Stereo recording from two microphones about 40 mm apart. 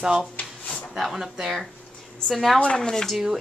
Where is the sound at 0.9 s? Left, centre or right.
Centre.